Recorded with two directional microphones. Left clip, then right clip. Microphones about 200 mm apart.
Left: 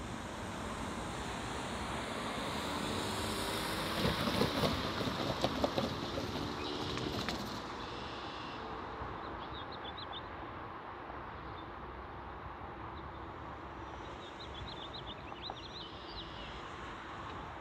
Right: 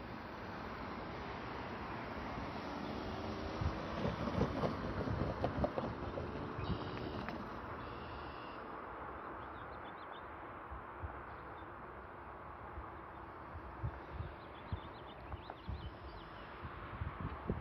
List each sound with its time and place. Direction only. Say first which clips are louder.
0.7 s vehicle: left 4 dB; 50° left (ahead or behind); by 3.1 s 30° left (ahead or behind)
4.0 s vehicle: left 5 dB; 10° right (ahead or behind); by 6.6 s 30° right (ahead or behind)
7.0 s bird: left 6 dB; 30° right (ahead or behind)